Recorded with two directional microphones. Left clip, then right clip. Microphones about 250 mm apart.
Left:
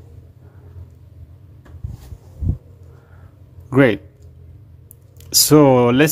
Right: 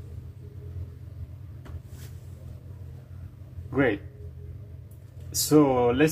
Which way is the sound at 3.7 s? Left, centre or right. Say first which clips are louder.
Left 10 dB; left.